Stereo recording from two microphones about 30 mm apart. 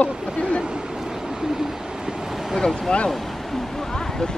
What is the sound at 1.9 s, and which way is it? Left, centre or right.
Vehicle, right.